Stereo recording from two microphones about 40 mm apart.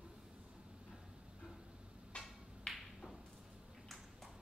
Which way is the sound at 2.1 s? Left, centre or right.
Left.